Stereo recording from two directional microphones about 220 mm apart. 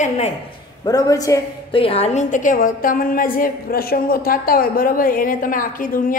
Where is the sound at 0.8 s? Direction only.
15° left (ahead or behind).